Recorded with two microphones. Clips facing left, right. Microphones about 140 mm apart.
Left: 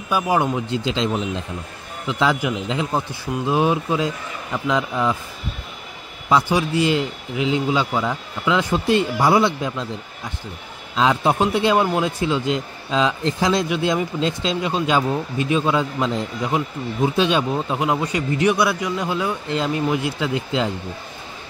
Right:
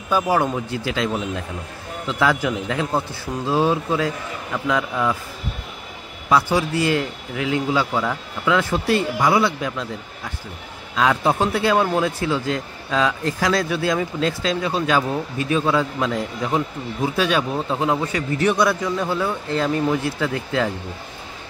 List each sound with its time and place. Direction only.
0.1 s speech: 15° left (ahead or behind)
6.2 s speech: 15° left (ahead or behind)
11.0 s speech: 20° left (ahead or behind)